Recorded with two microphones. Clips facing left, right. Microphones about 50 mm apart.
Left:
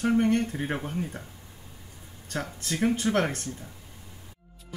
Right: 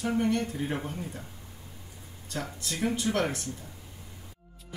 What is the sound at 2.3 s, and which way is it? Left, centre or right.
Speech, left.